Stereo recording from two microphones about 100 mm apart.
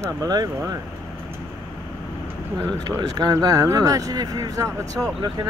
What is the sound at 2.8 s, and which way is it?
Speech, 40° right (ahead or behind).